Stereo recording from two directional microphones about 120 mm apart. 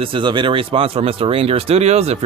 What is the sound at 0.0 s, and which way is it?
Speech, 45° right (ahead or behind).